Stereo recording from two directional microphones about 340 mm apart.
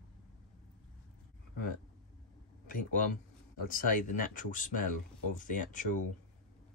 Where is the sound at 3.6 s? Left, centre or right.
Left.